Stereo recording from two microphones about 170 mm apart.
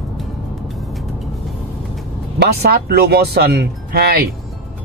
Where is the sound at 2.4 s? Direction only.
70° right (ahead or behind).